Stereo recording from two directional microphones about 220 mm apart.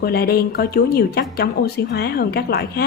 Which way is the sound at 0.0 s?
45° left (ahead or behind).